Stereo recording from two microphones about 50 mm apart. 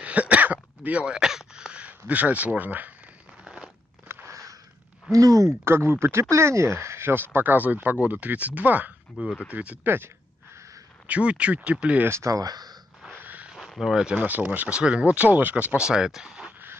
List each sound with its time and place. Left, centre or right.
0.0 s throat clearing: right
1.0 s speech: centre; by 2.9 s right
3.4 s crunch: centre
4.1 s biting: right
5.1 s speech: right
5.7 s speech: right
9.8 s speech: right
11.1 s speech: right
12.2 s speech: right
13.1 s a sound: right
13.7 s speech: centre
14.4 s speech: right
15.1 s speech: right
15.8 s speech: centre